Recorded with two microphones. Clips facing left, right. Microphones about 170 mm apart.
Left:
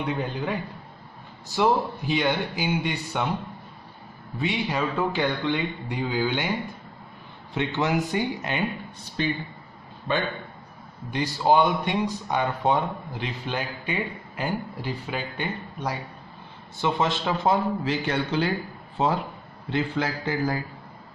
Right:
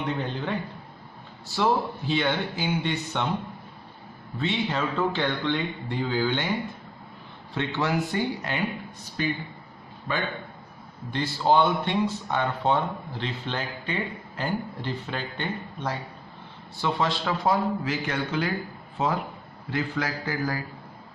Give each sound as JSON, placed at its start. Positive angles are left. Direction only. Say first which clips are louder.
{"t": 0.0, "sound": "speech", "louder": "left 1 dB", "side_deg": 10}
{"t": 4.4, "sound": "speech", "louder": "left 1 dB", "side_deg": 10}
{"t": 7.5, "sound": "a man's voice", "louder": "left 2 dB", "side_deg": 15}
{"t": 11.1, "sound": "a man's voice", "louder": "left 1 dB", "side_deg": 15}